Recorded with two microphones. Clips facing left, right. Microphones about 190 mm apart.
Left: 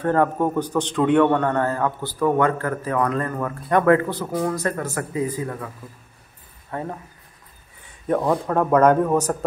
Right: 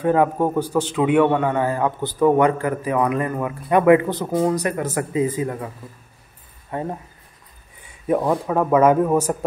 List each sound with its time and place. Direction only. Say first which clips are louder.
0.0 s a man's voice: right 2 dB; 10° right (ahead or behind)
6.7 s a man's voice: right 3 dB; 15° right (ahead or behind)
8.1 s a man's voice: right 1 dB; 5° right (ahead or behind)